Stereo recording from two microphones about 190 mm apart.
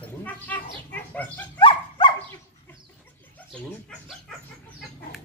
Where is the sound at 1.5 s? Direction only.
25° left (ahead or behind).